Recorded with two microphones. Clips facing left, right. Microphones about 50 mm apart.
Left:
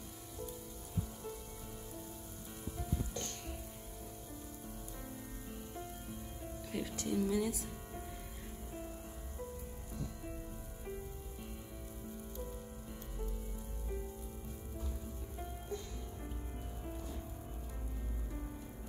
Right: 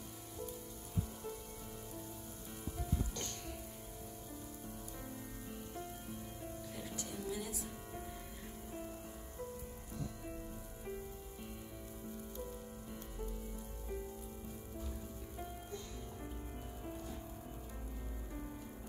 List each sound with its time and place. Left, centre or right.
5.5 s music: centre
7.0 s music: left
9.9 s music: centre